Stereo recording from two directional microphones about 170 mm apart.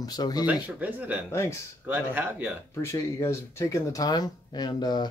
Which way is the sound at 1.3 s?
15° left (ahead or behind).